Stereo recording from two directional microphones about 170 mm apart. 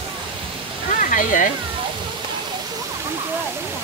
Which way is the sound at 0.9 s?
50° left (ahead or behind).